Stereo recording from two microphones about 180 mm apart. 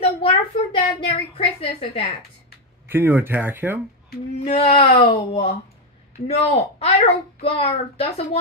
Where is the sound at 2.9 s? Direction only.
10° right (ahead or behind).